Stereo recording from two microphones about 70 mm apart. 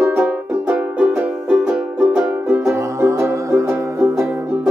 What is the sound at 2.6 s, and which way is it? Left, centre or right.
Music, right.